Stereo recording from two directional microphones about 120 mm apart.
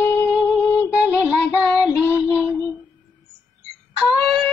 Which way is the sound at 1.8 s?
15° left (ahead or behind).